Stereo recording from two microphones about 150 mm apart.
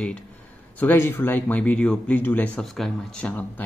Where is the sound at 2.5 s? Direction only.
Centre (ahead or behind).